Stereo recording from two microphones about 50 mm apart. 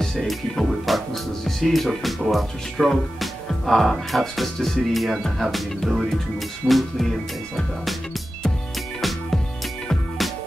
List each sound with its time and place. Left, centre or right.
0.0 s speech: centre
6.6 s speech: centre